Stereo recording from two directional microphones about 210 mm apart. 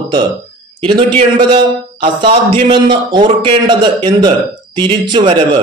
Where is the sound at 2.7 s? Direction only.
20° right (ahead or behind).